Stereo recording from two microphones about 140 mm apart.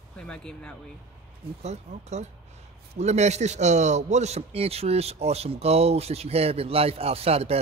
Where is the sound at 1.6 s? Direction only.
55° right (ahead or behind).